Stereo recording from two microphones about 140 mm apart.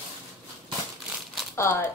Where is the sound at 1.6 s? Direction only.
15° left (ahead or behind).